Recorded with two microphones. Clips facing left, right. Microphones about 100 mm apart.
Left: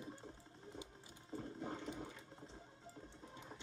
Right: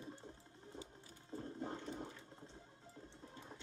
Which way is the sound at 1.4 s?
35° right (ahead or behind).